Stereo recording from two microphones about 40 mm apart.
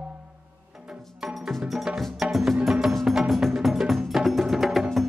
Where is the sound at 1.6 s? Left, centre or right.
Centre.